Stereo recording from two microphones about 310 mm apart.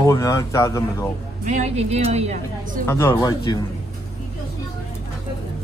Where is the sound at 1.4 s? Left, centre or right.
Right.